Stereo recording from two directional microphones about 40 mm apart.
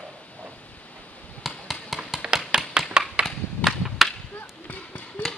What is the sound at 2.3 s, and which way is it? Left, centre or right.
Tap, centre.